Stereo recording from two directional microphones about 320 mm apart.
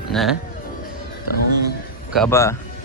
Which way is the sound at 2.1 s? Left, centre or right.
Centre.